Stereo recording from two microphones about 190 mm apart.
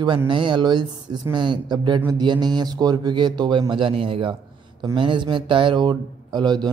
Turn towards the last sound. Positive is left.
turn(degrees=-20)  # may be behind; listen again after turning